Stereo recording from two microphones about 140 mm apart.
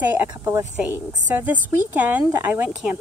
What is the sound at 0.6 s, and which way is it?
Speech, 60° right (ahead or behind).